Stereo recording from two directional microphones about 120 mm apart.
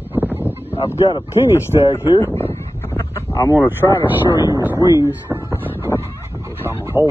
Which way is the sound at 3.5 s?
20° right (ahead or behind).